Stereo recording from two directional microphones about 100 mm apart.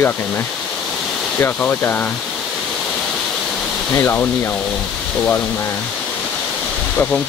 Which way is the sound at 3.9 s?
25° left (ahead or behind).